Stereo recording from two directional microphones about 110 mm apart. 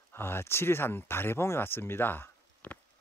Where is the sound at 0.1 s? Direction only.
20° left (ahead or behind).